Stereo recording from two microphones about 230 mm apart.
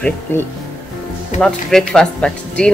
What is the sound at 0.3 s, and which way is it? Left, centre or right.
Speech, centre.